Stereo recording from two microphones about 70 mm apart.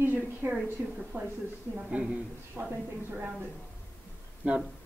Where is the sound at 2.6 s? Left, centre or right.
Right.